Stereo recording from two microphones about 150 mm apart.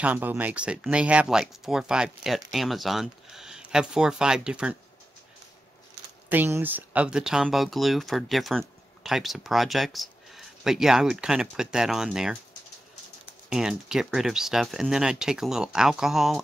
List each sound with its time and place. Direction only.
0.0 s speech: 10° right (ahead or behind)
6.2 s speech: 15° right (ahead or behind)
13.5 s speech: 5° right (ahead or behind)